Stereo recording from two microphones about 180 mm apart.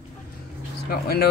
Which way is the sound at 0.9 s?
60° left (ahead or behind).